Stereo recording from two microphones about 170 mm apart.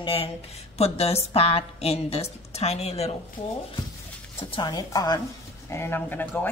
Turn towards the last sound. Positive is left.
turn(degrees=10)  # may be behind; listen again after turning